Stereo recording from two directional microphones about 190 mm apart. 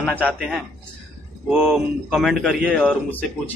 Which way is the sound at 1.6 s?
Centre (ahead or behind).